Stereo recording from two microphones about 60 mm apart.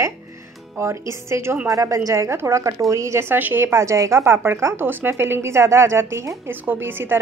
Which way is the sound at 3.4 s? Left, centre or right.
Right.